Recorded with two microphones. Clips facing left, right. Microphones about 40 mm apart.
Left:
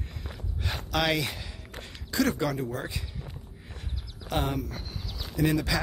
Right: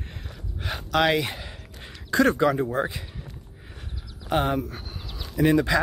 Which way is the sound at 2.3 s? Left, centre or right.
Right.